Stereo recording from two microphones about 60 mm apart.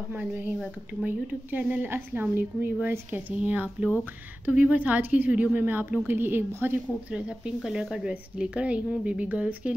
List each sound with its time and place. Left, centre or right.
0.1 s speech: right
1.9 s a woman's voice: right
7.1 s speech: centre